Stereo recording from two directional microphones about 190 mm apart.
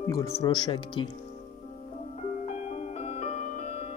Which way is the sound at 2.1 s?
35° left (ahead or behind).